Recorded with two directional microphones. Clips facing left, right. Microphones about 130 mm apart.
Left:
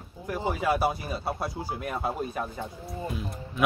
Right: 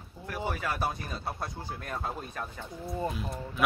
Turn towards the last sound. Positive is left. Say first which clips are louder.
# even
turn(degrees=0)  # may be behind; listen again after turning